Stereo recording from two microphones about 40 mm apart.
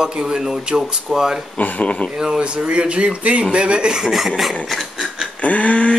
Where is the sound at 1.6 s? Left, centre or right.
Left.